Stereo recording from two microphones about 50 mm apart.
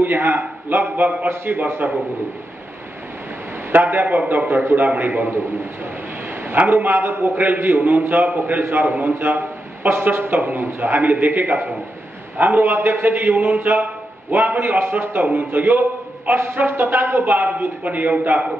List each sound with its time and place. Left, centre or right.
0.0 s a man's voice: right
3.7 s a man's voice: right
6.7 s a man's voice: right